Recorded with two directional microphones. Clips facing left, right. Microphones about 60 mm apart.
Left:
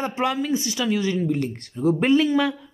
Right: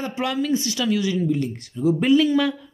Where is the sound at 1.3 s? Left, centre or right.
Left.